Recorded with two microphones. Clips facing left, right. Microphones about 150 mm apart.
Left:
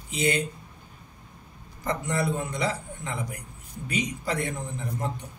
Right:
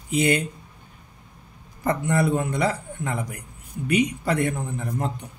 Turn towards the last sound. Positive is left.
turn(degrees=-55)  # may be behind; listen again after turning